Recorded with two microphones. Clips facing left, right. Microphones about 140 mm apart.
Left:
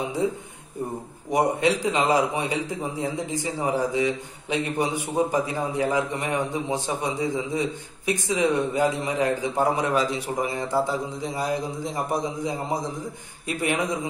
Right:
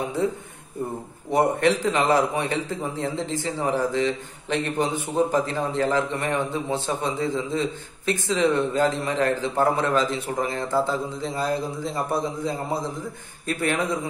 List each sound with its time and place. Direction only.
1.3 s a man's voice: 15° left (ahead or behind)